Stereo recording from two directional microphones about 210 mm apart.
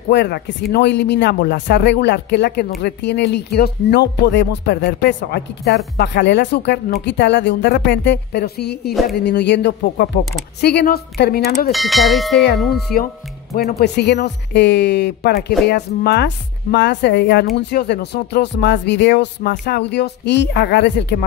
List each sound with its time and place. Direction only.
0.1 s speech: 50° left (ahead or behind)
11.7 s speech: centre (ahead or behind)
12.7 s speech: 45° left (ahead or behind)